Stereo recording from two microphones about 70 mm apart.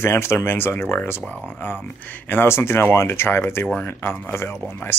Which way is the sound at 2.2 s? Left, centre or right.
Left.